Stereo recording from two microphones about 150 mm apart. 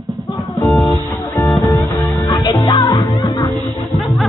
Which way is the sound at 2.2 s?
25° left (ahead or behind).